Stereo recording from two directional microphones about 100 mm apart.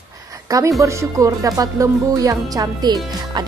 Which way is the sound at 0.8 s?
30° right (ahead or behind).